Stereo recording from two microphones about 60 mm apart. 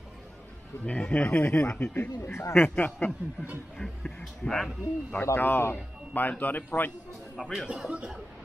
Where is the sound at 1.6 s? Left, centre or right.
Left.